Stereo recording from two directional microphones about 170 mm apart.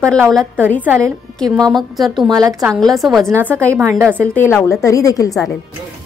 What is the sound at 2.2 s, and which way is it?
Speech, 20° right (ahead or behind).